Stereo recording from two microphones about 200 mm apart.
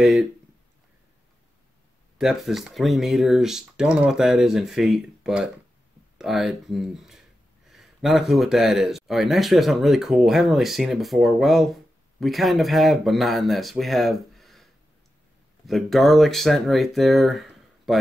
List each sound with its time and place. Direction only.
0.0 s speech: centre (ahead or behind)
2.1 s speech: centre (ahead or behind)